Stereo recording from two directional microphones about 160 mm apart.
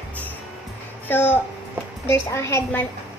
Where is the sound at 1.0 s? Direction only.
10° left (ahead or behind).